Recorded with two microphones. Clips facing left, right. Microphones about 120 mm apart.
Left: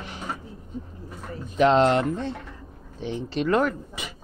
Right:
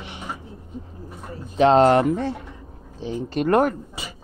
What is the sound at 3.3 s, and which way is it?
Speech, 50° right (ahead or behind).